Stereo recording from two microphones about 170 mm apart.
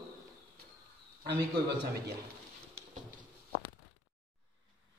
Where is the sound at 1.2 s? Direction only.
75° right (ahead or behind).